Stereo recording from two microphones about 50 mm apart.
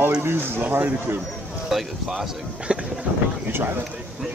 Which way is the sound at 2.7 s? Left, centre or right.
Centre.